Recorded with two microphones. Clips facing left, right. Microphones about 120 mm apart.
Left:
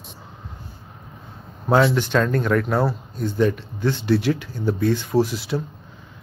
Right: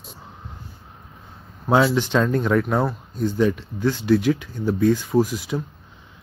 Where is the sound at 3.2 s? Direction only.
10° right (ahead or behind).